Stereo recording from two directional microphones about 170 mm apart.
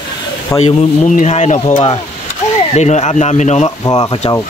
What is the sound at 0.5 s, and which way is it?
Speech, 45° left (ahead or behind).